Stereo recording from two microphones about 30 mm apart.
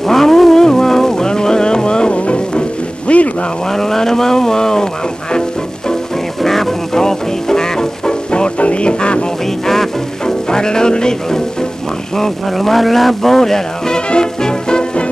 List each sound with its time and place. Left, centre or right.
0.0 s music: centre; by 2.1 s left
2.1 s music: left
3.1 s a sound: left
3.7 s speech: centre
6.4 s music: centre
8.5 s music: left
9.7 s music: centre
10.5 s speech: left
12.2 s speech: centre; by 15.0 s left